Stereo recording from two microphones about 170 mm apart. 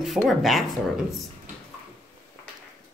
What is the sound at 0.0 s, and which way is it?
Speech, centre (ahead or behind).